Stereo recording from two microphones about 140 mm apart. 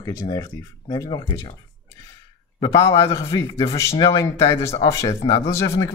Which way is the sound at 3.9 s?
40° left (ahead or behind).